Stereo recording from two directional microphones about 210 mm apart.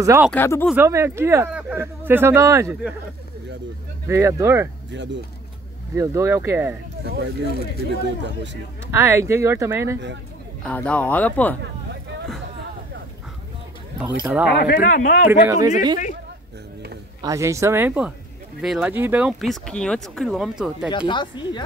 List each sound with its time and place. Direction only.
0.0 s speech: 15° right (ahead or behind)
0.3 s speech: 10° left (ahead or behind)
0.7 s speech: 10° right (ahead or behind)
4.1 s speech: 15° right (ahead or behind)
4.9 s speech: 60° right (ahead or behind)
5.9 s speech: 15° right (ahead or behind)
7.8 s speech: 60° right (ahead or behind)
8.9 s speech: 10° right (ahead or behind)
10.6 s speech: 5° left (ahead or behind)
14.2 s speech: 5° right (ahead or behind)
14.5 s speech: 45° left (ahead or behind)
15.4 s speech: 15° right (ahead or behind)
17.2 s speech: 15° right (ahead or behind)
21.1 s speech: 20° left (ahead or behind)